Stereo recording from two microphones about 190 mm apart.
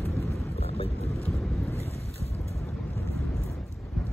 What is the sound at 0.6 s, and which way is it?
Boat, 35° left (ahead or behind).